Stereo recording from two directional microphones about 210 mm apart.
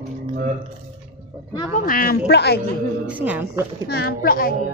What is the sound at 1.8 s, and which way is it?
Speech, 40° left (ahead or behind).